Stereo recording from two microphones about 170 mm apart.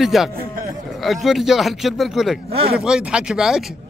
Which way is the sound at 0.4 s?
60° right (ahead or behind).